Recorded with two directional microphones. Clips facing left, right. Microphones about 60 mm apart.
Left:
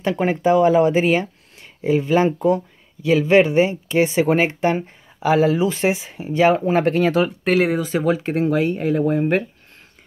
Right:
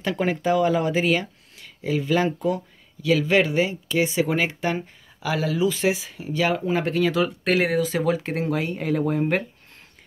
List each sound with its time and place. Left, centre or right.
0.0 s speech: left